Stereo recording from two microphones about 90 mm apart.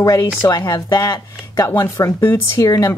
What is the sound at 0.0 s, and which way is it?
Speech, 40° left (ahead or behind).